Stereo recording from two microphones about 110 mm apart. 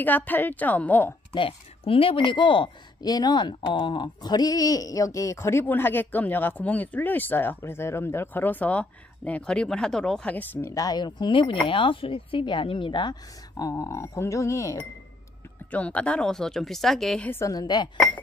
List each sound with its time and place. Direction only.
0.0 s a woman's voice: 15° left (ahead or behind)
1.3 s speech: 55° left (ahead or behind); by 10.7 s 15° left (ahead or behind)
10.7 s speech: 35° left (ahead or behind)
15.7 s a woman's voice: 10° left (ahead or behind)
17.3 s speech: 30° left (ahead or behind)